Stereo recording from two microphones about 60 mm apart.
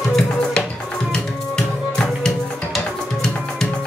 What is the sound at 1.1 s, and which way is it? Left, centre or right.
Music, centre.